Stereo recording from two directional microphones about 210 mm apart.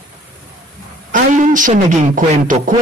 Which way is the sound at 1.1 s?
40° right (ahead or behind).